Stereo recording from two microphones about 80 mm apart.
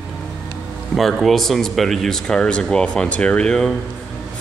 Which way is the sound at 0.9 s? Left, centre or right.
Centre.